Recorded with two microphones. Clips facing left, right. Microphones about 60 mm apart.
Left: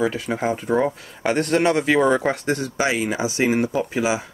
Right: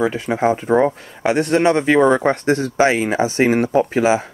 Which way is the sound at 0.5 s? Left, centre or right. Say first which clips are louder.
Right 5 dB; centre.